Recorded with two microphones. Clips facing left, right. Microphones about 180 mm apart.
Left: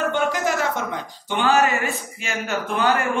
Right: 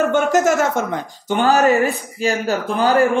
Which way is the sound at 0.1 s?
45° right (ahead or behind).